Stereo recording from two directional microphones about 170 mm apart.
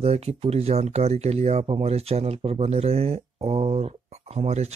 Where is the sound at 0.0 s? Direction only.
35° right (ahead or behind).